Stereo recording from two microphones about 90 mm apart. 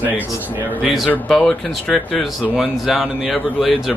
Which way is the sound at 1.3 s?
5° left (ahead or behind).